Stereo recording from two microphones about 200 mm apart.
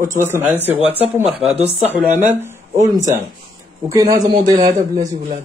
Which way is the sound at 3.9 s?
20° right (ahead or behind).